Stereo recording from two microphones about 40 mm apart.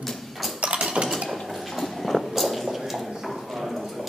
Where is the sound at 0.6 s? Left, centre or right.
Right.